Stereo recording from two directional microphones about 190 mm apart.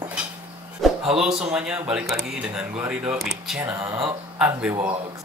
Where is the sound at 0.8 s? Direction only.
5° right (ahead or behind).